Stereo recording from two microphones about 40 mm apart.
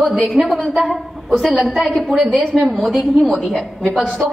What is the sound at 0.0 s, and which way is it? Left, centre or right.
A woman's voice, centre.